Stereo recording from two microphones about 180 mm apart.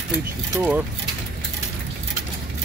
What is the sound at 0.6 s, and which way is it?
Speech, 10° right (ahead or behind).